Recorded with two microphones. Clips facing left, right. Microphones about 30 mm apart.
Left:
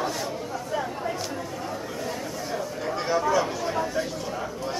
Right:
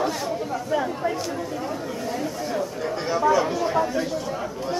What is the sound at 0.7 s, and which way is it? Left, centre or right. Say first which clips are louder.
Chatter: right 5 dB; centre.